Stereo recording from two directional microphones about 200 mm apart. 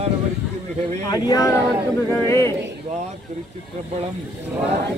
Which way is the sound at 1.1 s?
20° left (ahead or behind).